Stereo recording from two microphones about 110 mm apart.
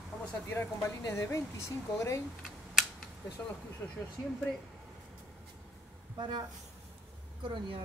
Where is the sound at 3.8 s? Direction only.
20° left (ahead or behind).